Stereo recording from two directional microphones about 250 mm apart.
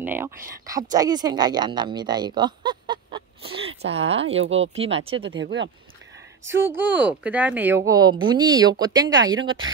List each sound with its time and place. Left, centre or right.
0.0 s speech: centre
4.4 s speech: right
4.7 s speech: right
5.3 s speech: right
6.7 s speech: centre
9.3 s speech: right